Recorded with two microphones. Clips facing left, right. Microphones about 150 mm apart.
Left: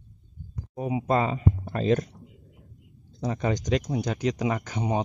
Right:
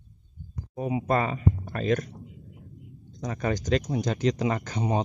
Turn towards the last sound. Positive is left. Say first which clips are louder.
# even
turn(degrees=15)  # may be behind; listen again after turning